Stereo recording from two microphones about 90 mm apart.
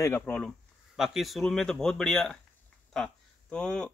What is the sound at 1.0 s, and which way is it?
Speech, centre (ahead or behind).